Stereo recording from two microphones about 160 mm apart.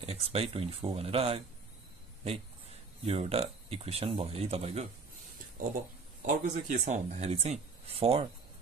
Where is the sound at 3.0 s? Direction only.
40° right (ahead or behind).